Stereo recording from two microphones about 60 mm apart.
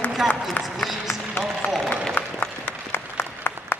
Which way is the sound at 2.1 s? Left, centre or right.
Left.